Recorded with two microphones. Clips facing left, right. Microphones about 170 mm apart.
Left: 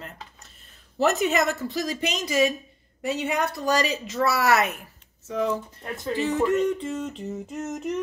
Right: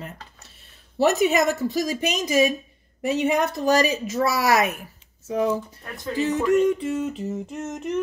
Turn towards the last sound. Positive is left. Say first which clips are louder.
# right 1 dB
turn(degrees=0)  # may be behind; listen again after turning